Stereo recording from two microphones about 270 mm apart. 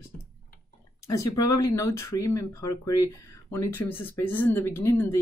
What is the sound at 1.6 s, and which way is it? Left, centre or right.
Speech, centre.